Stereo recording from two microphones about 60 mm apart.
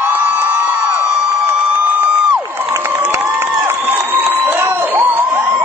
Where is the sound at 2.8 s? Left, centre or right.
Right.